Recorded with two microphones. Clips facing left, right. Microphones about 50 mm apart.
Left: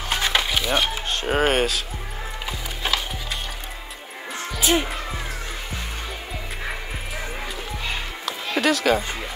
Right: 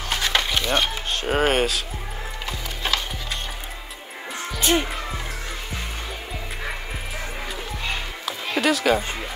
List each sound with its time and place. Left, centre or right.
0.1 s music: centre
4.4 s music: centre
7.9 s music: centre